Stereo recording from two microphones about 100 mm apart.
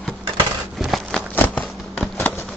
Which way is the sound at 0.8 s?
Centre (ahead or behind).